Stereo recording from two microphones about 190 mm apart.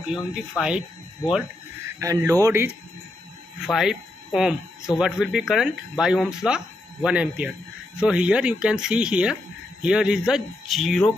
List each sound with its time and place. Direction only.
0.1 s speech: 5° right (ahead or behind)
2.0 s speech: 15° right (ahead or behind)
3.6 s speech: centre (ahead or behind)